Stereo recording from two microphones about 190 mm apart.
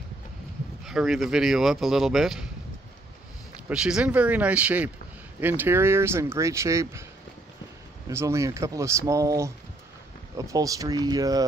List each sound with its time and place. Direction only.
0.8 s speech: centre (ahead or behind)
3.6 s speech: 5° right (ahead or behind)
8.1 s speech: 15° right (ahead or behind)